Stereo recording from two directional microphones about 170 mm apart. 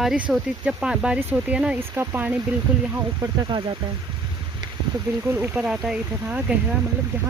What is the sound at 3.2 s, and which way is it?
Speech, 25° right (ahead or behind).